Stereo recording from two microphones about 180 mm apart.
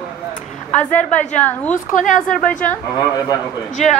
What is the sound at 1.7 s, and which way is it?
Speech, 45° left (ahead or behind).